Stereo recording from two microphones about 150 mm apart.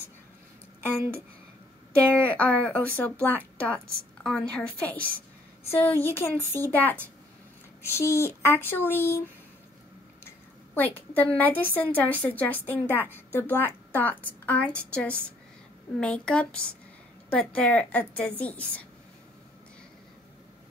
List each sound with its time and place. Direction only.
2.0 s a woman's voice: 10° left (ahead or behind)
10.2 s a sound: 15° left (ahead or behind)
11.3 s a woman's voice: 10° left (ahead or behind)